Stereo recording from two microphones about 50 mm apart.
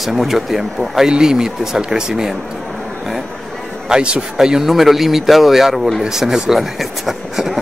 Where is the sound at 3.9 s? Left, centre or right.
Centre.